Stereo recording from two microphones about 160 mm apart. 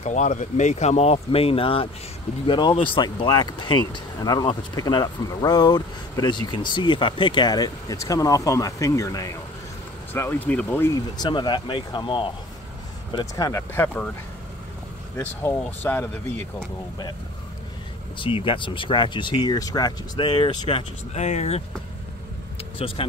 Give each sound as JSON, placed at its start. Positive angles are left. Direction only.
{"t": 0.0, "sound": "speech", "side_deg": 50}
{"t": 11.1, "sound": "speech", "side_deg": 30}
{"t": 15.1, "sound": "speech", "side_deg": 15}
{"t": 18.1, "sound": "speech", "side_deg": 30}
{"t": 21.1, "sound": "speech", "side_deg": 45}
{"t": 22.8, "sound": "speech", "side_deg": 35}